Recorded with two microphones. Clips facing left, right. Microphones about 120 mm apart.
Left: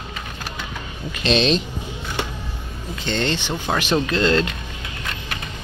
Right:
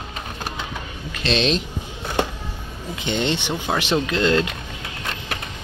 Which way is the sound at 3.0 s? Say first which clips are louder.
Even; 15° right (ahead or behind).